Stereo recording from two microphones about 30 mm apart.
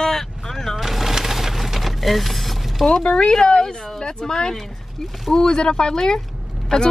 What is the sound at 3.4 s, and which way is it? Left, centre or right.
Speech, left.